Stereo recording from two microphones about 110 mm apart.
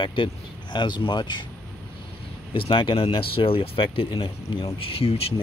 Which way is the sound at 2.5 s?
50° left (ahead or behind).